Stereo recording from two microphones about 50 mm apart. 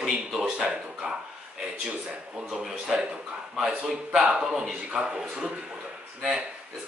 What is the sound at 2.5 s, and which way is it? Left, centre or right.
Speech, centre.